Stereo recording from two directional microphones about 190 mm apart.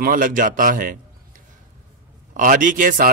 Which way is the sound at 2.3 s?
45° right (ahead or behind).